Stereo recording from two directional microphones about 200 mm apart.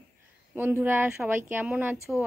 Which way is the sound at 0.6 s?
10° right (ahead or behind).